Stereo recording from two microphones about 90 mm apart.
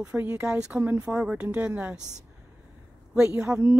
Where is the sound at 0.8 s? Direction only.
20° right (ahead or behind).